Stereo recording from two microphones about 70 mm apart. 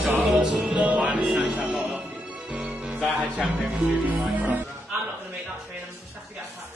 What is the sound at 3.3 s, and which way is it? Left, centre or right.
Speech, centre.